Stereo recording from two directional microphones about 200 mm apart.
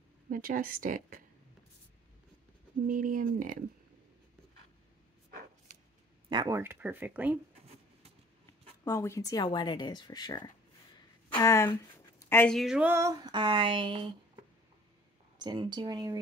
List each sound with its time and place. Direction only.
0.3 s a woman's voice: 45° right (ahead or behind)
2.9 s a woman's voice: 40° right (ahead or behind)
6.2 s speech: 20° right (ahead or behind)
8.8 s speech: 15° left (ahead or behind); by 14.4 s 25° right (ahead or behind)
15.4 s speech: 20° right (ahead or behind)